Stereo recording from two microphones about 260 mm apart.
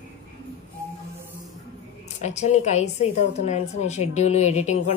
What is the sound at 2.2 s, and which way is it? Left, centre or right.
A woman's voice, left.